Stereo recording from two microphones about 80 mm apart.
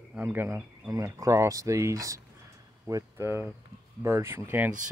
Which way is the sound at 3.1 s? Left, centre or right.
Right.